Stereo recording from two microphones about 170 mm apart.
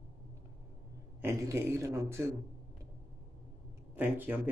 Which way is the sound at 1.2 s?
15° right (ahead or behind).